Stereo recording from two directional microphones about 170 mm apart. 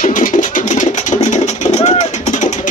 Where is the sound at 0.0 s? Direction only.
50° left (ahead or behind).